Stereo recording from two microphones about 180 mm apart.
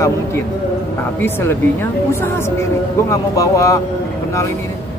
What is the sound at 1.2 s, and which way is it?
Speech, 15° left (ahead or behind).